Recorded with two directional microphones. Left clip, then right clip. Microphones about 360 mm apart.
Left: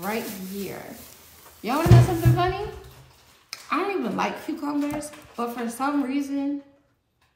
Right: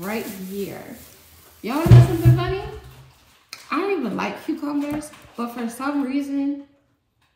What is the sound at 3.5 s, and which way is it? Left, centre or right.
A man's voice, centre.